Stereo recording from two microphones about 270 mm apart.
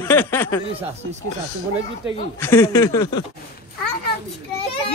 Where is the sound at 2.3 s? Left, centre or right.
Centre.